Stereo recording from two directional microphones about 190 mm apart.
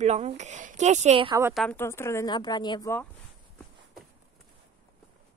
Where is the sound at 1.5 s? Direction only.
Centre (ahead or behind).